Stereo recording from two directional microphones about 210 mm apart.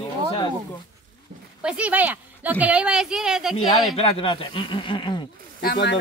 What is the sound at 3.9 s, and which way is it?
Speech, 25° left (ahead or behind).